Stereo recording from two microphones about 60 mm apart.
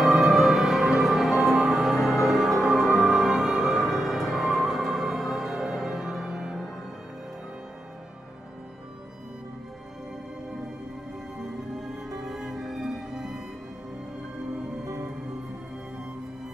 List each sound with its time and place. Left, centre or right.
0.0 s music: centre
12.3 s music: centre